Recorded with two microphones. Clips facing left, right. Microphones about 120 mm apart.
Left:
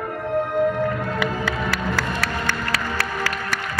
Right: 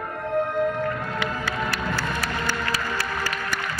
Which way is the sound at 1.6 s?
80° left.